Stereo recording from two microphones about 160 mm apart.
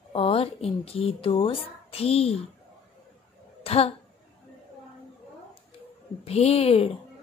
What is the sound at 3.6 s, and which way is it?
Speech, 40° left (ahead or behind).